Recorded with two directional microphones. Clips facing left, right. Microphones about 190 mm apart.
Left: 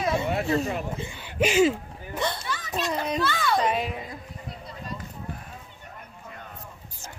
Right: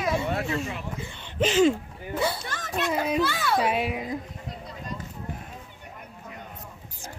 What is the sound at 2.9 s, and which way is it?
A child's voice, 5° right (ahead or behind).